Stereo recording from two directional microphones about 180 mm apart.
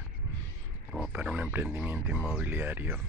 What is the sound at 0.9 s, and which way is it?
Speech, 5° right (ahead or behind).